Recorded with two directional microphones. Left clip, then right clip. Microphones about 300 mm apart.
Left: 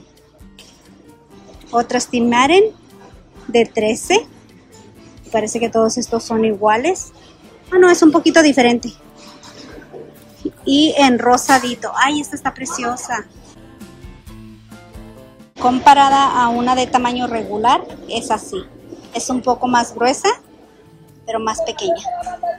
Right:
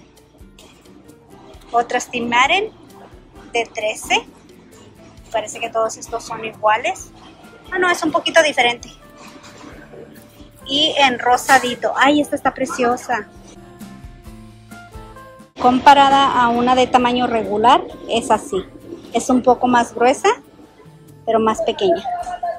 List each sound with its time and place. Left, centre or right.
1.8 s a woman's voice: centre
5.3 s speech: centre
10.6 s a woman's voice: centre
15.6 s a woman's voice: centre